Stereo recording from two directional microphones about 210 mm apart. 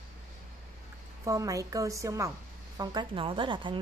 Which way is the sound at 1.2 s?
15° right (ahead or behind).